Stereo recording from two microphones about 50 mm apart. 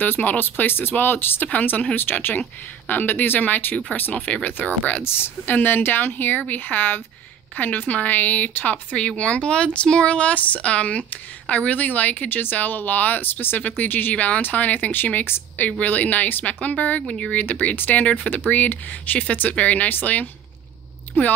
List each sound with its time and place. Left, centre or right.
0.0 s speech: left
1.5 s speech: left
2.0 s speech: left
4.1 s speech: left
5.0 s speech: left
8.9 s speech: left
17.5 s speech: left